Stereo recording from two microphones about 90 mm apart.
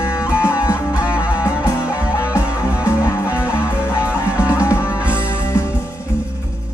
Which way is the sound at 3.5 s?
30° left (ahead or behind).